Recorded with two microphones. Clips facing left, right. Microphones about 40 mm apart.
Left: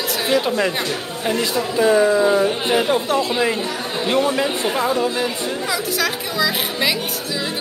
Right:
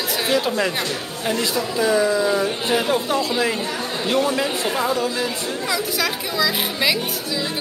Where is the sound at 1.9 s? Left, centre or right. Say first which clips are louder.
Left 4 dB; left.